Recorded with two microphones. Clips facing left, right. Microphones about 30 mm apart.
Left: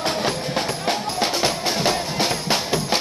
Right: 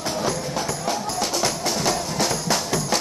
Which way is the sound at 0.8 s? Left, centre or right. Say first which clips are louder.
Left 2 dB; left.